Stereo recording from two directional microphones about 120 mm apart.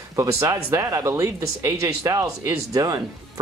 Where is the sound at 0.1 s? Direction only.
25° right (ahead or behind).